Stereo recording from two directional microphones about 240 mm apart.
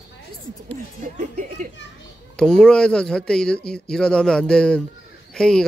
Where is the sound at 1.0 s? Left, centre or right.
Right.